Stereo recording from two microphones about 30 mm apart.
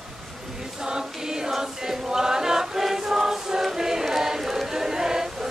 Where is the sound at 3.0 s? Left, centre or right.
Centre.